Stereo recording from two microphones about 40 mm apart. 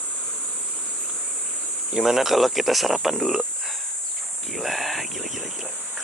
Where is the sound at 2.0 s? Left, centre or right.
Centre.